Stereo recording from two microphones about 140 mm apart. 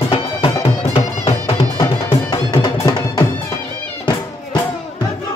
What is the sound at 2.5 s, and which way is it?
Music, 25° left (ahead or behind).